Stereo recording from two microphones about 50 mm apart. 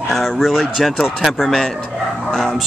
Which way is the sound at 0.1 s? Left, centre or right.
Centre.